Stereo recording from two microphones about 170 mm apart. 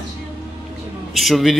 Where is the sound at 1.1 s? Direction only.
Centre (ahead or behind).